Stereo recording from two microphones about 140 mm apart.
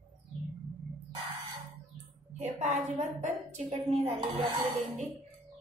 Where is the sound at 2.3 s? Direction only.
60° right (ahead or behind).